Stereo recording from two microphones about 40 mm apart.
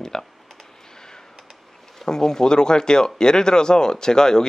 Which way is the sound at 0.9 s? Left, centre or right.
Centre.